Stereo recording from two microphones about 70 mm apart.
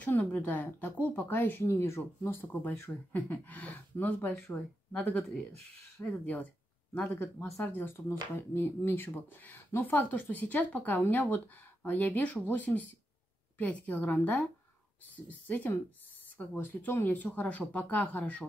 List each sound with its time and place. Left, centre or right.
0.0 s speech: left
1.6 s speech: left
7.6 s speech: left